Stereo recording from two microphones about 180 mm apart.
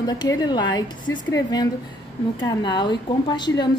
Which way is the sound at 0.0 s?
20° left (ahead or behind).